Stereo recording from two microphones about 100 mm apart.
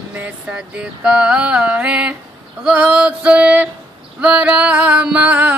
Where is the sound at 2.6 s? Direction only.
10° right (ahead or behind).